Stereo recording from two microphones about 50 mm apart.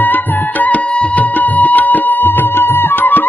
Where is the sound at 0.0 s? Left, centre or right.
Left.